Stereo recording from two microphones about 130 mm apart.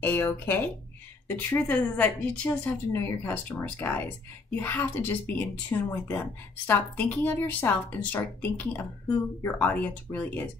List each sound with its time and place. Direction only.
0.0 s speech: 15° left (ahead or behind)